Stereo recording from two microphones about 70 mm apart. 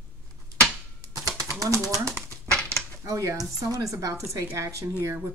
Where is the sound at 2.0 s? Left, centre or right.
Right.